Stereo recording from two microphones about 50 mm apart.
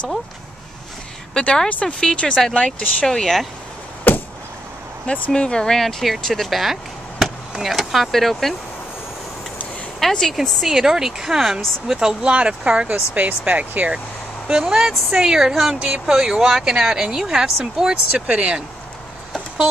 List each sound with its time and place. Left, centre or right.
1.3 s speech: centre
2.1 s speech: centre
4.1 s a sound: left
5.0 s speech: left; by 8.5 s centre
9.9 s a woman's voice: centre
10.3 s speech: centre
12.3 s speech: right
13.2 s speech: right
14.7 s speech: centre
18.3 s speech: right